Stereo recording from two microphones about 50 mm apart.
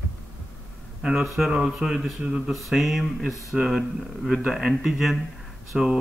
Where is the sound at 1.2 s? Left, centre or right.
Centre.